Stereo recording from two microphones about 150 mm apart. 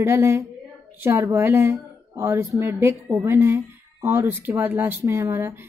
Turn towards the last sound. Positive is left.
turn(degrees=-15)  # may be behind; listen again after turning